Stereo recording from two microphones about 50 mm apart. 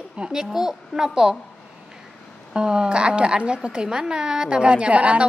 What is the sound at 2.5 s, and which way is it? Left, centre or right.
A woman's voice, centre.